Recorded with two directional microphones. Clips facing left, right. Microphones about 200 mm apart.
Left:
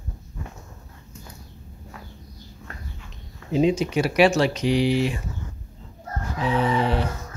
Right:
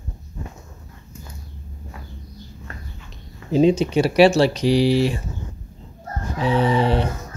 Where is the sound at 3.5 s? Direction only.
30° right (ahead or behind).